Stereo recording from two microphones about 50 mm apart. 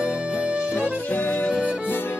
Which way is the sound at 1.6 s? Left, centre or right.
Left.